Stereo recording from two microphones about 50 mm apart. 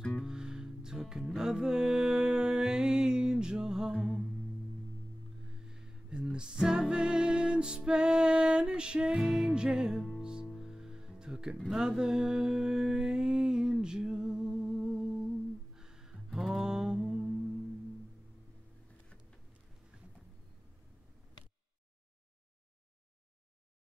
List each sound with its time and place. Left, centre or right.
0.2 s music: centre
5.5 s music: centre
11.7 s a sound: centre
15.7 s mantra: centre